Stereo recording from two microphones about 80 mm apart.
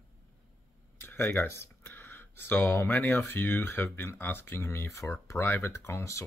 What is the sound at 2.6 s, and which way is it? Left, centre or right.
Speech, left.